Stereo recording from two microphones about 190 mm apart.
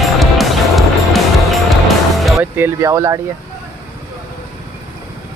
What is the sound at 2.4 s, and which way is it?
Music, 15° right (ahead or behind).